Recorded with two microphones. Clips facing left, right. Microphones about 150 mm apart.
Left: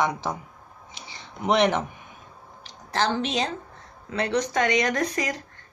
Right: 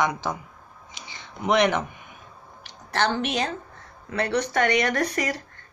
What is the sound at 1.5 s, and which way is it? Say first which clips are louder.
Speech: even; 30° left (ahead or behind).